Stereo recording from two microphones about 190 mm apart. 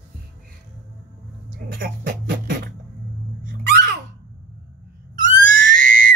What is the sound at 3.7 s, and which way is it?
Babbling, 60° right (ahead or behind).